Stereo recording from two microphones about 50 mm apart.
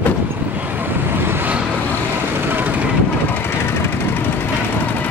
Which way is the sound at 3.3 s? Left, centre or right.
Left.